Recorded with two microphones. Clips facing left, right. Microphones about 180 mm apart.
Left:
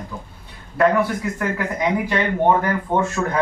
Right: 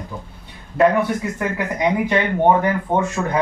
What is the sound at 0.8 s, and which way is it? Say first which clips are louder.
A man's voice: right 2 dB; 20° right (ahead or behind).